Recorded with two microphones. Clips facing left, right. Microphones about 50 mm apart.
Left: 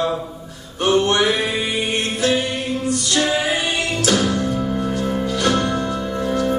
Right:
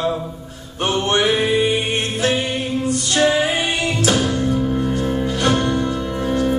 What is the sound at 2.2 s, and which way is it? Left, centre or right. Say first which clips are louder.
Mantra: even; right.